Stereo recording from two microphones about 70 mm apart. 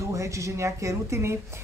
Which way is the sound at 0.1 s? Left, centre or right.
Right.